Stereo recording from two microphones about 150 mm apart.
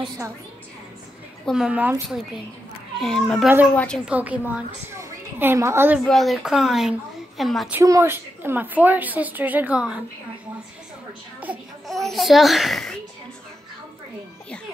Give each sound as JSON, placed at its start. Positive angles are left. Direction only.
{"t": 1.4, "sound": "a woman's voice", "side_deg": 0}
{"t": 3.0, "sound": "a woman's voice", "side_deg": 5}
{"t": 4.0, "sound": "a woman's voice", "side_deg": -10}
{"t": 6.0, "sound": "a woman's voice", "side_deg": 0}
{"t": 7.7, "sound": "a woman's voice", "side_deg": -20}
{"t": 11.9, "sound": "a woman's voice", "side_deg": 0}